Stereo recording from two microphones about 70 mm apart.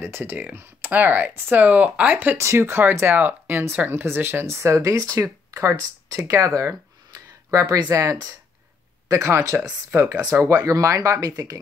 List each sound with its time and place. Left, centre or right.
0.0 s speech: right
2.3 s speech: right
7.2 s a sound: right
7.9 s speech: right
10.4 s speech: right